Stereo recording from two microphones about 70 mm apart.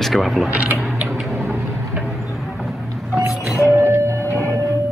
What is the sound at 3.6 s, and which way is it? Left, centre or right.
Music, left.